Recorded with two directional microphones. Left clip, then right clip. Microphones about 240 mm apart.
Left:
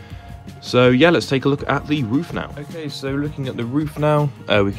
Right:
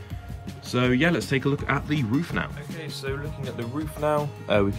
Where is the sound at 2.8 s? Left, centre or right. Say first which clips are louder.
Left 6 dB; left.